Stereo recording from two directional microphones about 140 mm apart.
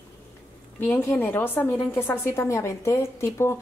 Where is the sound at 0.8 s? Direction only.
15° left (ahead or behind).